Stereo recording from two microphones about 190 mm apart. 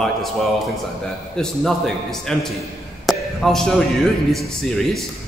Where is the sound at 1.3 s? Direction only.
Centre (ahead or behind).